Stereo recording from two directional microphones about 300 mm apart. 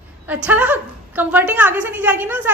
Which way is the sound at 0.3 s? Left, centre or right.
Centre.